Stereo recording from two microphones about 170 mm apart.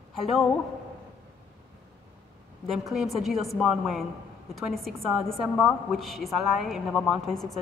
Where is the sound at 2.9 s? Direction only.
Centre (ahead or behind).